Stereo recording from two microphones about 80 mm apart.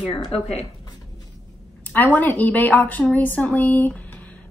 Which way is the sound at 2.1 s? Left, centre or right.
Centre.